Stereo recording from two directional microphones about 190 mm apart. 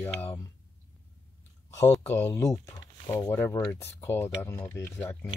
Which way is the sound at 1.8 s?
15° left (ahead or behind).